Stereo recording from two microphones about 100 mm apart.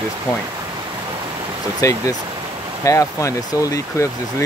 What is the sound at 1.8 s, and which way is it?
Speech, 35° left (ahead or behind).